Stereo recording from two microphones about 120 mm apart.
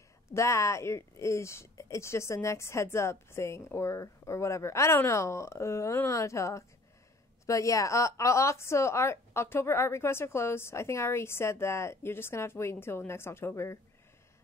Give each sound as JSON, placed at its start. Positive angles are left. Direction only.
{"t": 0.3, "sound": "speech", "side_deg": 25}